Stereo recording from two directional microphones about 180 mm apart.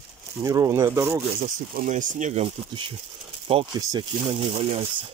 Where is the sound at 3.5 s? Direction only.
30° right (ahead or behind).